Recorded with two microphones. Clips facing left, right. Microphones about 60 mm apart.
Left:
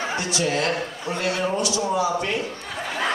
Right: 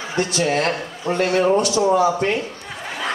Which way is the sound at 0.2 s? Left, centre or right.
Right.